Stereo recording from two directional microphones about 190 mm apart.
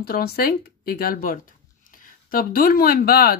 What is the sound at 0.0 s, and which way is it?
Speech, 55° left (ahead or behind).